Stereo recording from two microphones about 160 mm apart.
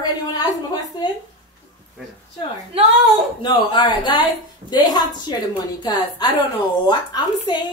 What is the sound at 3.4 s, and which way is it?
A woman's voice, 30° left (ahead or behind).